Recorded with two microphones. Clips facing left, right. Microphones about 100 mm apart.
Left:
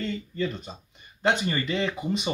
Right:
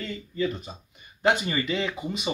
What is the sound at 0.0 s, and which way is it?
Speech, 5° right (ahead or behind).